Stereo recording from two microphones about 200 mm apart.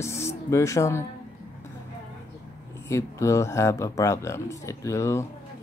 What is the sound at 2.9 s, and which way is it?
Speech, 15° left (ahead or behind).